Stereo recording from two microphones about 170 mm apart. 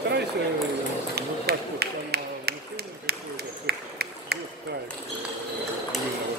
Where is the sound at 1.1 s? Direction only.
70° right (ahead or behind).